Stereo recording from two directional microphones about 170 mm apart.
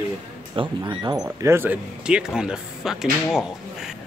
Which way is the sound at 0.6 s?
25° right (ahead or behind).